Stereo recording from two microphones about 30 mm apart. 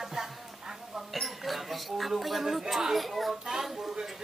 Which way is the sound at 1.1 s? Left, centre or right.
Centre.